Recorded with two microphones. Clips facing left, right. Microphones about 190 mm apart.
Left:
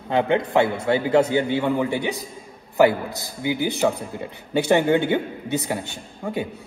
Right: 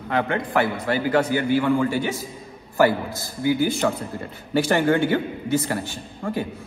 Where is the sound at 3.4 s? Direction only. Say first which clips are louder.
Right 1 dB; 20° left (ahead or behind).